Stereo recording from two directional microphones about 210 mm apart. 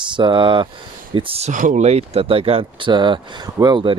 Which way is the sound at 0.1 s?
25° right (ahead or behind).